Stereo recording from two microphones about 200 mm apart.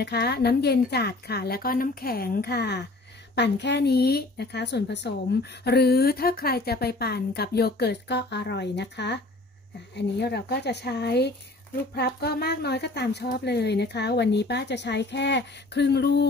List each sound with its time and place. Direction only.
0.0 s a woman's voice: 55° left (ahead or behind)